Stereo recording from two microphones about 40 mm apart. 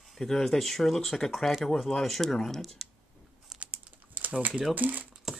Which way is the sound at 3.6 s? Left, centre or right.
Right.